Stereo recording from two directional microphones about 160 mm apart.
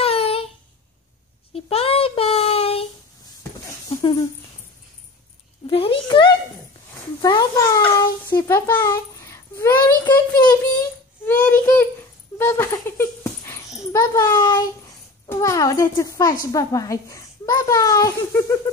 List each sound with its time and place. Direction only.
0.0 s a sound: 40° left (ahead or behind)
1.5 s child singing: 35° left (ahead or behind)
3.9 s dog: 35° left (ahead or behind)
5.7 s a child's voice: 35° left (ahead or behind); by 8.7 s 15° left (ahead or behind)
8.7 s child singing: 20° left (ahead or behind)
11.2 s child singing: 10° left (ahead or behind)
12.4 s dog: 15° left (ahead or behind)
13.9 s a child's voice: 20° left (ahead or behind)